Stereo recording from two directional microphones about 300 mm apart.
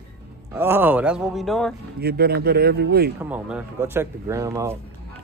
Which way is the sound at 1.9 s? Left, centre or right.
Right.